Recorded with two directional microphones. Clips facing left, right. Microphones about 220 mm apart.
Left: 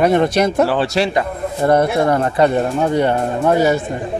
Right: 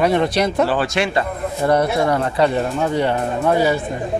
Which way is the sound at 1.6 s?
50° left (ahead or behind).